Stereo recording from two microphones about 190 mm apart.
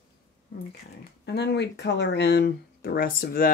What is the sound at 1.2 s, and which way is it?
Speech, 65° left (ahead or behind).